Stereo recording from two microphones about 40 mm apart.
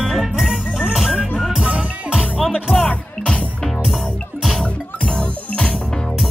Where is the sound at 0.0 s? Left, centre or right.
Centre.